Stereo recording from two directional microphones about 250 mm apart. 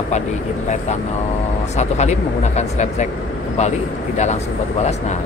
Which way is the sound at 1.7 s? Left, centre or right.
Left.